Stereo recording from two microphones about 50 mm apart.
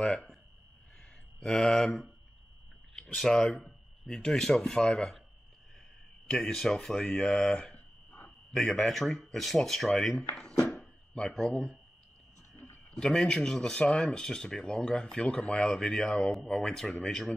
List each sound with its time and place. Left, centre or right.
0.0 s speech: centre
1.4 s speech: centre
3.2 s speech: centre
3.5 s a sound: centre
4.1 s speech: centre
6.2 s speech: centre
7.0 s speech: left
8.8 s speech: centre
10.4 s a sound: centre
11.1 s speech: centre
12.5 s a sound: left
12.9 s speech: centre